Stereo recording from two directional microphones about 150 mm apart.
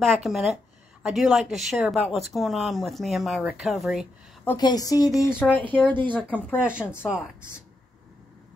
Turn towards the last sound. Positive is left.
turn(degrees=15)  # may be behind; listen again after turning